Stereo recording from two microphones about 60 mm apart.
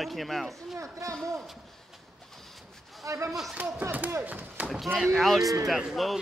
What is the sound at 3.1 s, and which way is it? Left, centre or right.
Speech, right.